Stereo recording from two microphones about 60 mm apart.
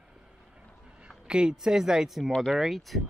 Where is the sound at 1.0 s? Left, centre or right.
Centre.